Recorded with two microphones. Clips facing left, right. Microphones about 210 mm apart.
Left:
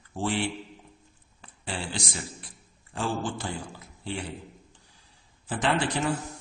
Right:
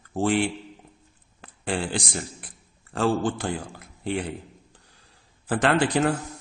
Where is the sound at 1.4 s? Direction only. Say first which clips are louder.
Right 7 dB; 55° right (ahead or behind).